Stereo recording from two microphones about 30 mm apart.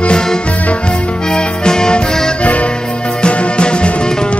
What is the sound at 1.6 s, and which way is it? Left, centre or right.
Music, left.